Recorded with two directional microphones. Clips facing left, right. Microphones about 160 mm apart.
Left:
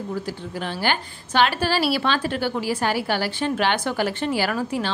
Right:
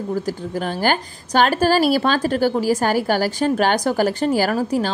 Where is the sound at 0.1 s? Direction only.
40° right (ahead or behind).